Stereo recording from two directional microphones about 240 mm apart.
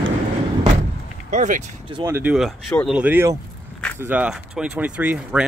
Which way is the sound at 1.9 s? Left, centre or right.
Centre.